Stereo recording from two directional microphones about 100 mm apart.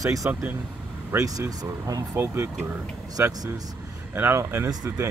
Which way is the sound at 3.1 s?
35° right (ahead or behind).